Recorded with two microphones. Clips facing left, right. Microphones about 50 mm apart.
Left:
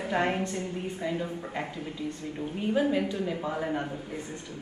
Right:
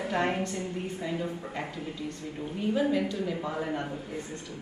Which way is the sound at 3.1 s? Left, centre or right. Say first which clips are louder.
Left 1 dB; left.